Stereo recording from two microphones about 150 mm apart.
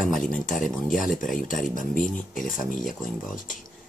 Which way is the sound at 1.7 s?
65° left (ahead or behind).